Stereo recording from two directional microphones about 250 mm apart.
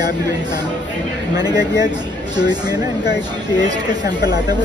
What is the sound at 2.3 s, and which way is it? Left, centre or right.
Speech, centre.